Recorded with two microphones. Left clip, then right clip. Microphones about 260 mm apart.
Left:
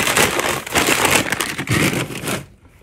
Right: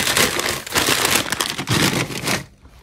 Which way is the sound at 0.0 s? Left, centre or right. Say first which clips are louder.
Left 2 dB; centre.